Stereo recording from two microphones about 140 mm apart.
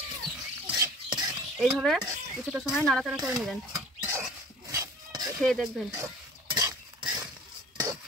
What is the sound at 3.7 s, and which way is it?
Dog, 25° right (ahead or behind).